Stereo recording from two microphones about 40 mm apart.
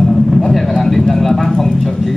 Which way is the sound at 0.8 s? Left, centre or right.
Centre.